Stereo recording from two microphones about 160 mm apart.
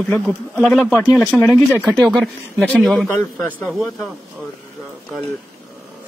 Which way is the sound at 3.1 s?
15° left (ahead or behind).